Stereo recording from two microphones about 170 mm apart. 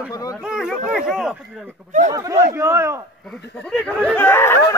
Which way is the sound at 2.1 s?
20° right (ahead or behind).